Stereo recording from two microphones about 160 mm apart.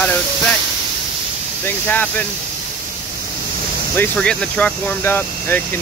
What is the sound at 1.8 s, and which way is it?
Speech, 10° left (ahead or behind).